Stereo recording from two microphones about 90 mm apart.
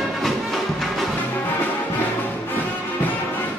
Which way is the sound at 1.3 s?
20° left (ahead or behind).